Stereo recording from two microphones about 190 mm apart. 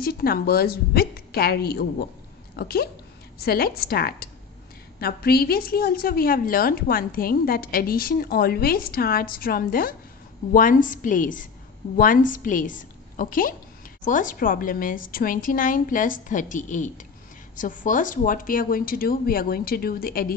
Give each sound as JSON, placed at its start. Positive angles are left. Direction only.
{"t": 0.0, "sound": "a woman's voice", "side_deg": 55}